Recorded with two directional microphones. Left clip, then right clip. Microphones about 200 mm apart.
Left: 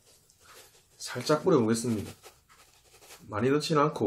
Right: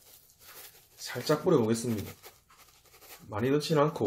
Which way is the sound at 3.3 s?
20° right (ahead or behind).